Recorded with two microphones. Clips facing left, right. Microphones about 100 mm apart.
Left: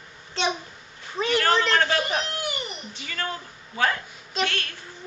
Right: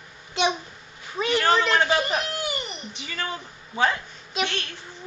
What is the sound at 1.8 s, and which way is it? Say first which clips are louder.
A woman's voice: right 1 dB; 15° right (ahead or behind).